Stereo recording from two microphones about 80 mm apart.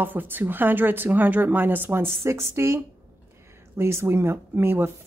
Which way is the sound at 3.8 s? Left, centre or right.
Right.